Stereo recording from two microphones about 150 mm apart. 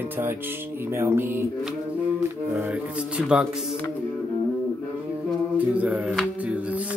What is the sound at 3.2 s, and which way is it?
Speech, centre (ahead or behind).